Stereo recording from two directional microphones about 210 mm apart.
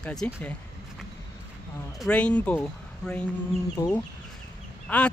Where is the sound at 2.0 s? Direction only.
5° left (ahead or behind).